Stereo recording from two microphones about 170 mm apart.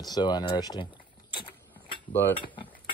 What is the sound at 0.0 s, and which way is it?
Speech, 25° left (ahead or behind).